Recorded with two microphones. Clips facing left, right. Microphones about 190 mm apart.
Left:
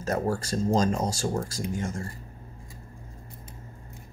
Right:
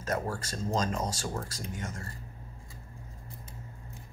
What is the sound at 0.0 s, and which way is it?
Speech, 30° left (ahead or behind).